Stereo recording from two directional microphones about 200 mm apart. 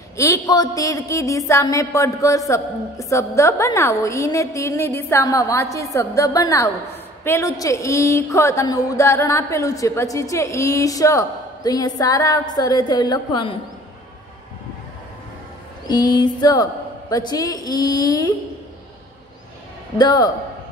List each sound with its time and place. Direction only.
0.2 s speech: 15° left (ahead or behind)
15.9 s a woman's voice: 20° left (ahead or behind)
20.0 s a woman's voice: 20° left (ahead or behind)